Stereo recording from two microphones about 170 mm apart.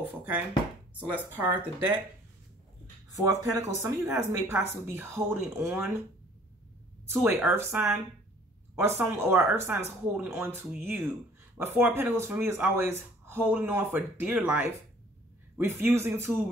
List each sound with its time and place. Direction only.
0.0 s speech: 10° right (ahead or behind)
3.5 s speech: 15° right (ahead or behind)
7.4 s speech: 15° right (ahead or behind)